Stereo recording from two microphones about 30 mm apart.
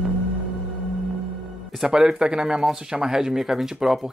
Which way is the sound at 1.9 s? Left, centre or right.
Right.